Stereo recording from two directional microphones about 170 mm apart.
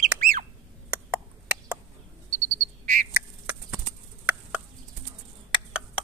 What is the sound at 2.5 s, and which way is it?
Frog, 50° right (ahead or behind).